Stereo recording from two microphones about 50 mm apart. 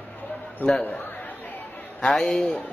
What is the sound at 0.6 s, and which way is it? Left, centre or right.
Speech, left.